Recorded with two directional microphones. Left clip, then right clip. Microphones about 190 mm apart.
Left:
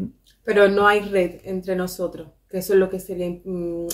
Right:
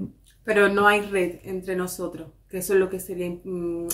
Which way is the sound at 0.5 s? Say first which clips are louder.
Left 3 dB; 20° right (ahead or behind).